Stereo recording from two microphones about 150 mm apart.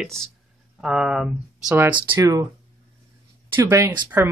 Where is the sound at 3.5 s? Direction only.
20° right (ahead or behind).